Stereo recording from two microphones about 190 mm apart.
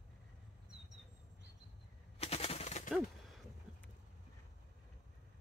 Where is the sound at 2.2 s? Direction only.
30° left (ahead or behind).